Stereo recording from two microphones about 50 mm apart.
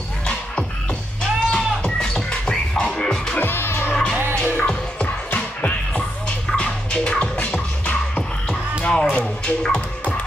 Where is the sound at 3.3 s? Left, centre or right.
Left.